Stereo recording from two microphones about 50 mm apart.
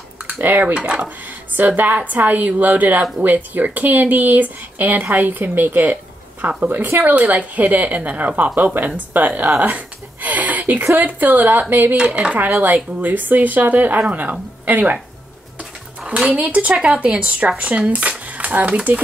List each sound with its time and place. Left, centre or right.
0.4 s speech: right
0.7 s speech: right
1.6 s a woman's voice: right
9.6 s a sound: right
11.0 s a woman's voice: right
12.0 s speech: right
12.4 s a woman's voice: right
16.3 s speech: right